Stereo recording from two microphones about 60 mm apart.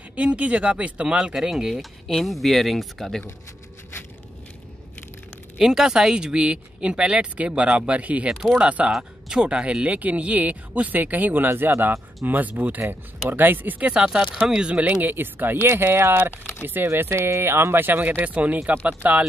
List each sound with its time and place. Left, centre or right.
0.1 s speech: right
1.1 s speech: centre
5.6 s speech: centre; by 8.3 s right
8.3 s speech: centre
8.5 s speech: right